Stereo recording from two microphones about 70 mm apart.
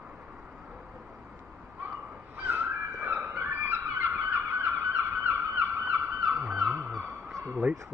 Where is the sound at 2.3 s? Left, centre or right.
Right.